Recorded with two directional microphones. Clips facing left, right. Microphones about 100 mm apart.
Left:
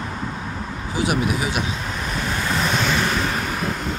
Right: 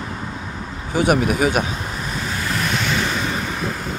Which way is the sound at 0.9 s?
50° right (ahead or behind).